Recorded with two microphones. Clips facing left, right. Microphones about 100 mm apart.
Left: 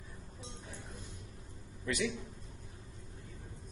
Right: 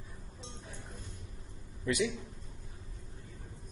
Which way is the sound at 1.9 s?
15° right (ahead or behind).